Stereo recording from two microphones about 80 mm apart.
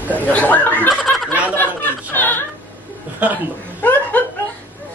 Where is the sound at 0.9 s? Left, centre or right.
Centre.